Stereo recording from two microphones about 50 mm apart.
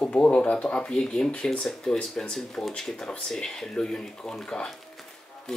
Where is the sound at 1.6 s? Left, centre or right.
Centre.